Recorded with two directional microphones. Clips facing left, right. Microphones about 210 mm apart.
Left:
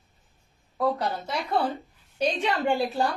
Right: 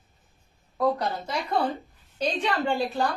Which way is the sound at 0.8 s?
Centre (ahead or behind).